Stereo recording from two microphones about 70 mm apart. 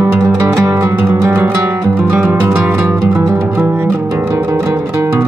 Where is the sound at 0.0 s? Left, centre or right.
Right.